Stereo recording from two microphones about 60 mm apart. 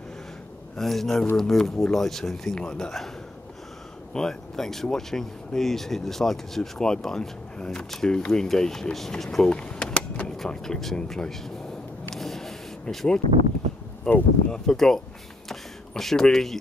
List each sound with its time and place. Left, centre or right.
0.7 s a man's voice: centre
4.1 s speech: centre
9.5 s keys jangling: centre
10.3 s speech: centre
12.2 s vehicle: centre
14.0 s speech: left
14.7 s speech: centre
15.4 s a sound: centre